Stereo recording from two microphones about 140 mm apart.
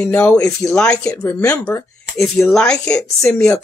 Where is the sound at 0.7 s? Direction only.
10° left (ahead or behind).